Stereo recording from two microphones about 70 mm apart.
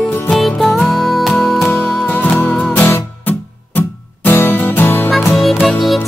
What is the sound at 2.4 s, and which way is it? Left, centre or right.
Music, left.